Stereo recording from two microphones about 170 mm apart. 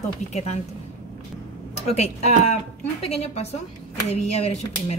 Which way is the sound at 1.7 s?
40° left (ahead or behind).